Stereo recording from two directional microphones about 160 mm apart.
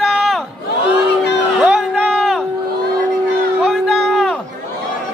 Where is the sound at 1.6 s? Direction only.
5° right (ahead or behind).